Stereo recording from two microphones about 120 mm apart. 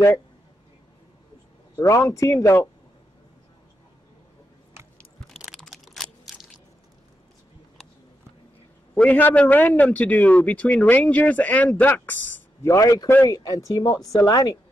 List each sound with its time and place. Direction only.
1.8 s speech: 25° left (ahead or behind)
5.4 s a sound: centre (ahead or behind)
8.9 s a man's voice: 15° left (ahead or behind)
12.6 s speech: 25° left (ahead or behind)